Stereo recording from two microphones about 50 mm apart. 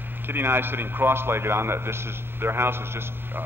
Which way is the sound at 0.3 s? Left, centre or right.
Right.